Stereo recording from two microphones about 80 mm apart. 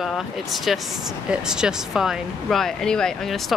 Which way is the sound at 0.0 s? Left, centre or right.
Centre.